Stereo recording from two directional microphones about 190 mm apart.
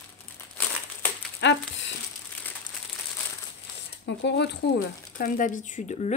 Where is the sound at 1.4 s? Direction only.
65° left (ahead or behind).